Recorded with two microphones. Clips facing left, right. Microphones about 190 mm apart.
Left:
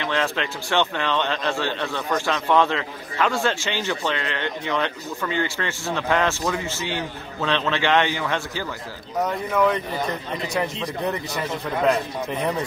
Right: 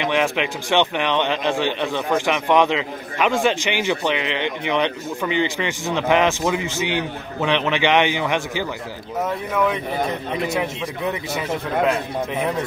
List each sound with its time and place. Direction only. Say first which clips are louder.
0.0 s a man's voice: right 4 dB; 15° right (ahead or behind)
9.2 s a man's voice: left 1 dB; 5° right (ahead or behind)